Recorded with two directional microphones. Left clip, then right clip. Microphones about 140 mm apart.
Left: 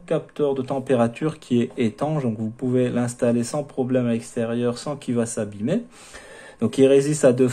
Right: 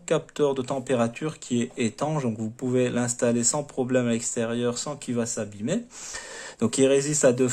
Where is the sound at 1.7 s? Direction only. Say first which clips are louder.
Left 3 dB; 20° right (ahead or behind).